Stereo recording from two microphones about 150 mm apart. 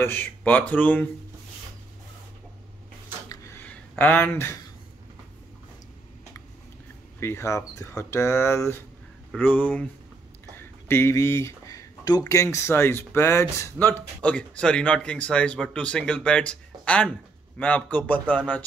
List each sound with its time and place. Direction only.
0.0 s speech: 15° left (ahead or behind)
3.3 s a sound: 15° left (ahead or behind)
7.2 s speech: 20° left (ahead or behind)